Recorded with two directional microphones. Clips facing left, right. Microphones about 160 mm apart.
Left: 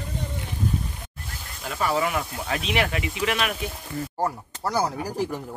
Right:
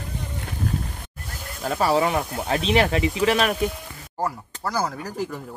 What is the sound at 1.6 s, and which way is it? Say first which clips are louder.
Speech: right 4 dB; 40° right (ahead or behind).